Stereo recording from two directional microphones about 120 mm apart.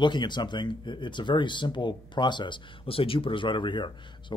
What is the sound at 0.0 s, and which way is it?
Speech, 40° left (ahead or behind).